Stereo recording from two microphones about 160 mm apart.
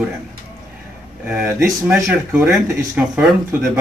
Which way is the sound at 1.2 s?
5° right (ahead or behind).